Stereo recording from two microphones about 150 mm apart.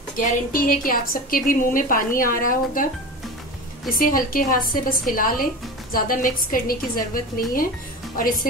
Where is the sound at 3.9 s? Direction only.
70° left (ahead or behind).